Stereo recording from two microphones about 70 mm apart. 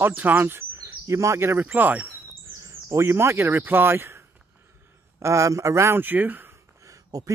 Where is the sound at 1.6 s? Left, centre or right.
Right.